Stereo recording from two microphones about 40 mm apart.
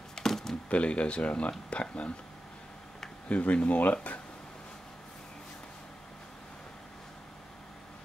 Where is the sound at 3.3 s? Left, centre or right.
Left.